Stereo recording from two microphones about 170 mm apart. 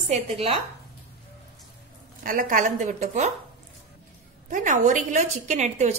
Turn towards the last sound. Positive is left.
turn(degrees=-45)  # may be behind; listen again after turning